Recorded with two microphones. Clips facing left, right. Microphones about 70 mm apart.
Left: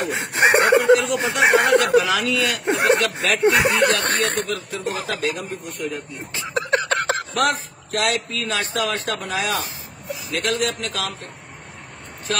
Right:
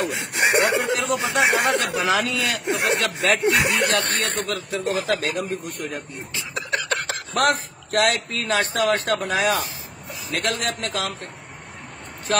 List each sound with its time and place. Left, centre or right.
0.0 s snicker: left
1.4 s a sound: left
2.0 s speech: right
2.6 s speech: left
3.0 s a man's voice: right
3.4 s speech: left
4.4 s a man's voice: right
6.3 s a sound: left
7.3 s speech: right
10.4 s a man's voice: right